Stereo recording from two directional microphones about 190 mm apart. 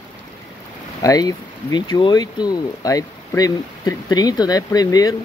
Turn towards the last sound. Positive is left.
turn(degrees=20)  # may be behind; listen again after turning